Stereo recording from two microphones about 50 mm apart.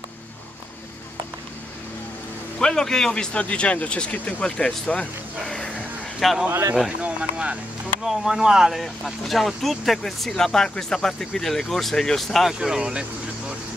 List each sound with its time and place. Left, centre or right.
2.6 s a man's voice: centre
3.3 s speech: left
6.2 s speech: centre
7.0 s speech: right
8.0 s speech: centre
12.5 s speech: centre